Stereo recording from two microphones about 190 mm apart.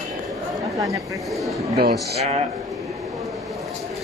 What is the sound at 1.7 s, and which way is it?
Speech, 55° right (ahead or behind).